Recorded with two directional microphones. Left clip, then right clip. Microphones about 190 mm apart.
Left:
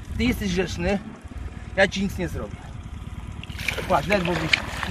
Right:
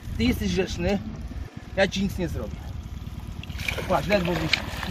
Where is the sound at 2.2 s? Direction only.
15° right (ahead or behind).